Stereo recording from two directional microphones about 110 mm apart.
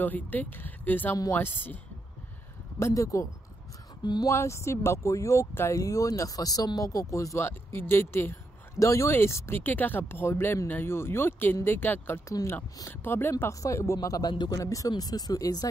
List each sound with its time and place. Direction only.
0.0 s speech: 15° left (ahead or behind)
2.8 s speech: 30° left (ahead or behind)
4.0 s speech: 40° left (ahead or behind)
4.3 s speech: 25° left (ahead or behind)